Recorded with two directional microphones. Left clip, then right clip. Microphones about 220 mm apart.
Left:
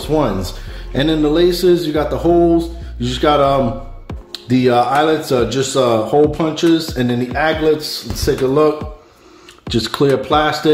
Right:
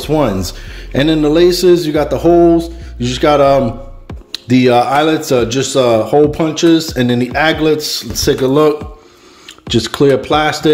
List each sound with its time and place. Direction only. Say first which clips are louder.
0.0 s speech: right 3 dB; 30° right (ahead or behind)
9.7 s speech: right 4 dB; 25° right (ahead or behind)